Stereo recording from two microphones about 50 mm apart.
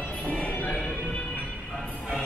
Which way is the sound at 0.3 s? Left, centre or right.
Left.